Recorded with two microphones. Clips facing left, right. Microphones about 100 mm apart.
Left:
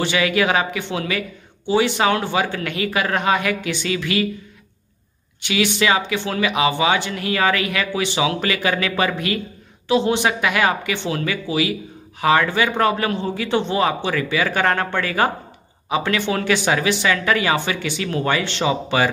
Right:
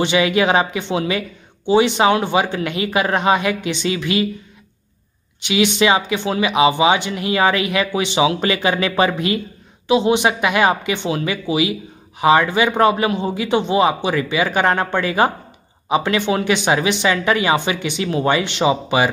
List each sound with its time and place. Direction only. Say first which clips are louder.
0.0 s speech: right 3 dB; 20° right (ahead or behind)
5.4 s speech: right 3 dB; 20° right (ahead or behind)